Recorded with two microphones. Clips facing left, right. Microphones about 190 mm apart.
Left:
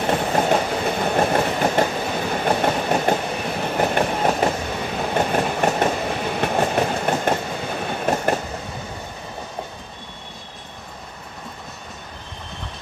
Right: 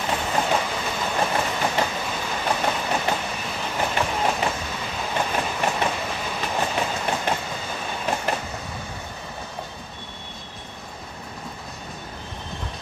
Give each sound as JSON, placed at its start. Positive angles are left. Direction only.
{"t": 0.0, "sound": "train", "side_deg": 45}
{"t": 6.2, "sound": "train", "side_deg": 55}